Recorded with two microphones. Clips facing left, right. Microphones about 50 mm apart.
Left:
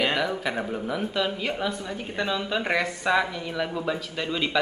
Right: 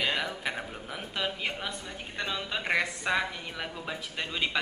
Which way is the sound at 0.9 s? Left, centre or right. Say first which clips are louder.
Left 5 dB; centre.